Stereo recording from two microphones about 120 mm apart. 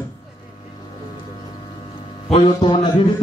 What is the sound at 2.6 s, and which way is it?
Speech, 40° left (ahead or behind).